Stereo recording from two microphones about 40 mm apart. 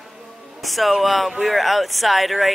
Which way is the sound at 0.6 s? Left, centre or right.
Centre.